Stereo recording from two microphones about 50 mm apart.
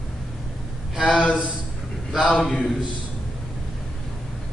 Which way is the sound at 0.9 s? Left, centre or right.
Centre.